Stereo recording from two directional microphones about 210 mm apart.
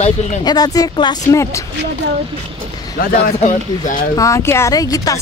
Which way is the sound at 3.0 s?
40° left (ahead or behind).